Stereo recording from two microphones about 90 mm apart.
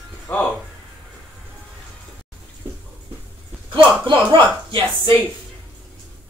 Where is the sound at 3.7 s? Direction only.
70° right (ahead or behind).